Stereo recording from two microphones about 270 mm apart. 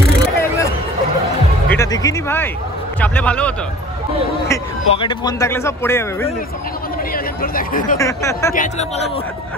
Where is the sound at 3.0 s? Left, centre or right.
Centre.